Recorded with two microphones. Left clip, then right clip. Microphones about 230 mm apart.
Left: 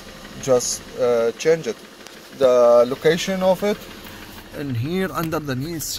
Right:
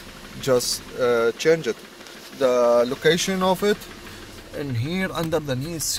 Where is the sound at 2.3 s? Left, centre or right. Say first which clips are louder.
Left 4 dB; centre.